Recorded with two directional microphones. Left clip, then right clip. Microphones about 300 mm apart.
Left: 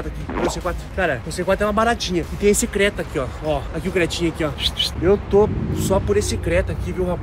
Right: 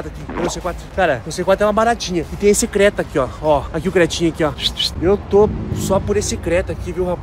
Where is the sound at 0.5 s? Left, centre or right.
Centre.